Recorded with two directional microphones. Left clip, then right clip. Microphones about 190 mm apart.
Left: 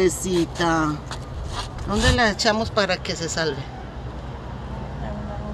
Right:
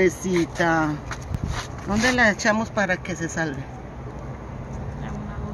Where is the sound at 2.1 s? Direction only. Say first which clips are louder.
Right 1 dB; 25° right (ahead or behind).